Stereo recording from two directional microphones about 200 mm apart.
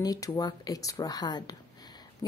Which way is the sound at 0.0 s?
15° left (ahead or behind).